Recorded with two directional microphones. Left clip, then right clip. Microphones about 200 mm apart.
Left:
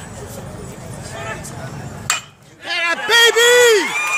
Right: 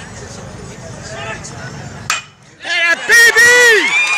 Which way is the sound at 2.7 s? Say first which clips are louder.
Right 5 dB; 5° left (ahead or behind).